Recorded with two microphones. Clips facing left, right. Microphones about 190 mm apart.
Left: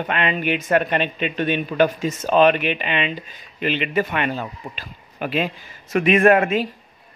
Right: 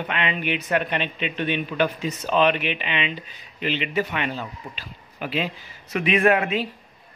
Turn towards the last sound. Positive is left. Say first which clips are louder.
# left 4 dB
turn(degrees=45)  # may be behind; listen again after turning